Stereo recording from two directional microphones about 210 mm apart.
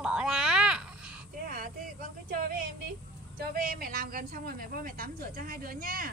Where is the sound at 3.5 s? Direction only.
45° right (ahead or behind).